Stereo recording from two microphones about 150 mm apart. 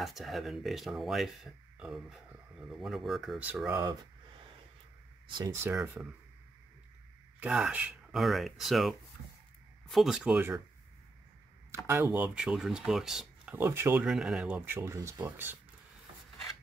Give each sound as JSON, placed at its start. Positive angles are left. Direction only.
{"t": 0.0, "sound": "speech", "side_deg": 0}
{"t": 3.7, "sound": "speech", "side_deg": -25}
{"t": 5.4, "sound": "speech", "side_deg": -20}
{"t": 7.3, "sound": "speech", "side_deg": -10}
{"t": 11.7, "sound": "speech", "side_deg": -20}
{"t": 13.6, "sound": "speech", "side_deg": -15}
{"t": 14.0, "sound": "speech", "side_deg": -5}